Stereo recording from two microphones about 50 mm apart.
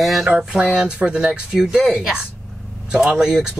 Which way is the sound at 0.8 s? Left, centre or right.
Centre.